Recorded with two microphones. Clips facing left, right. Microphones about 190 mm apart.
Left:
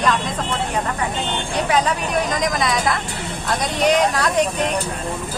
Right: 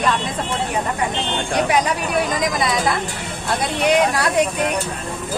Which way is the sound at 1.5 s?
10° right (ahead or behind).